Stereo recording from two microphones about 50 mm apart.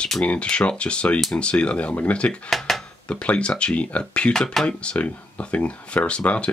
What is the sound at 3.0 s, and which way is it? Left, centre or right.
Speech, left.